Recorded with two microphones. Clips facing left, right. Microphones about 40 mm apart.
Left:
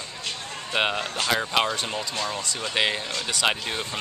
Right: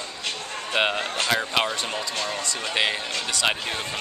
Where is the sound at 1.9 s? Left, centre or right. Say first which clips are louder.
Right 1 dB; centre.